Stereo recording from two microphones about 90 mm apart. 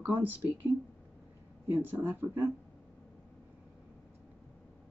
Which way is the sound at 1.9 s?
25° right (ahead or behind).